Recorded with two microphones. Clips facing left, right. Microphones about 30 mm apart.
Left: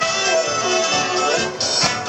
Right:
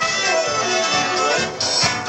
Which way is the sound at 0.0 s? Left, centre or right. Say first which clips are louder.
Left 1 dB; centre.